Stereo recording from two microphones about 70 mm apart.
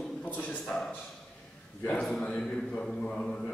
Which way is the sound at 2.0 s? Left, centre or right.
Centre.